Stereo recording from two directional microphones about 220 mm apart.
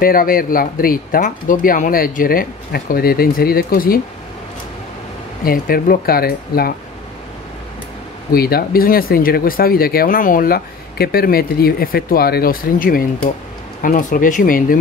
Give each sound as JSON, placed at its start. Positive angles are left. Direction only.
{"t": 0.0, "sound": "speech", "side_deg": 40}
{"t": 5.4, "sound": "speech", "side_deg": 40}
{"t": 8.3, "sound": "speech", "side_deg": 45}